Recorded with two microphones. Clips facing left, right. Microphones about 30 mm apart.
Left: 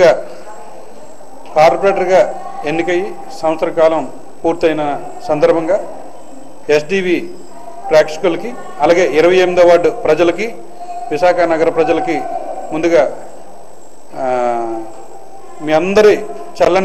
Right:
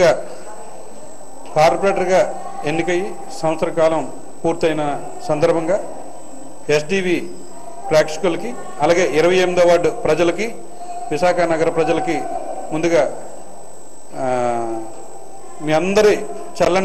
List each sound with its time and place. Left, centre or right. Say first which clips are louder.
0.0 s a man's voice: left 5 dB; centre
1.5 s a man's voice: left 4 dB; centre
14.1 s a sound: left 4 dB; centre
15.6 s a man's voice: left 5 dB; centre